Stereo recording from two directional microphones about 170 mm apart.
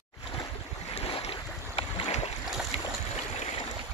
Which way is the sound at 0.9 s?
35° left (ahead or behind).